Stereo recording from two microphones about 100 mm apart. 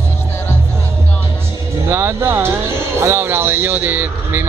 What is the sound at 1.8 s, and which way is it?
Music, 25° right (ahead or behind).